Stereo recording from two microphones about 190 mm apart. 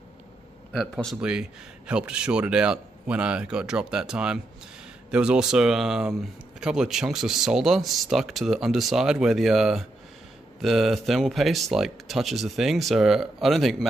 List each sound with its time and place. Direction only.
0.7 s a man's voice: 5° right (ahead or behind)